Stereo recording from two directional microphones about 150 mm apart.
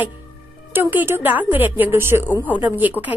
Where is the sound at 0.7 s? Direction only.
15° right (ahead or behind).